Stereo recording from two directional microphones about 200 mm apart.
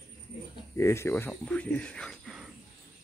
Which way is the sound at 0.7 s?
15° left (ahead or behind).